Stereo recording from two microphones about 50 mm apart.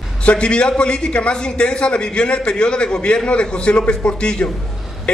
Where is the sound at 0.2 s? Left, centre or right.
Left.